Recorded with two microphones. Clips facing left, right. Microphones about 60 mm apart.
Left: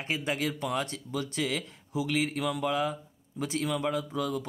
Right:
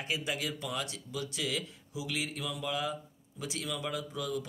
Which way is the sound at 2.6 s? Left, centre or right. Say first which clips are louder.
Left 6 dB; left.